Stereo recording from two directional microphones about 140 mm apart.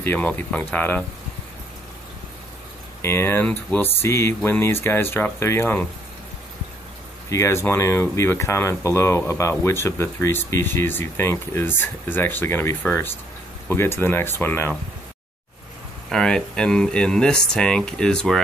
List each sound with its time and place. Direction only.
0.0 s speech: 10° left (ahead or behind)
3.0 s speech: 15° left (ahead or behind)
7.2 s speech: 20° left (ahead or behind)
16.1 s speech: 5° left (ahead or behind)